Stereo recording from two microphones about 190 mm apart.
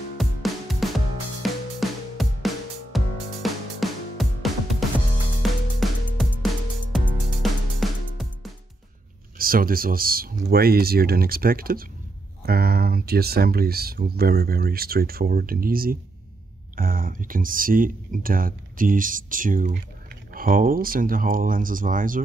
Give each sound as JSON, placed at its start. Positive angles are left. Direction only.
{"t": 0.2, "sound": "music", "side_deg": 0}
{"t": 9.4, "sound": "speech", "side_deg": -50}